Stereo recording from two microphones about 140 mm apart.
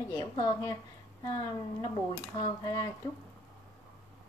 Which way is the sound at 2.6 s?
25° left (ahead or behind).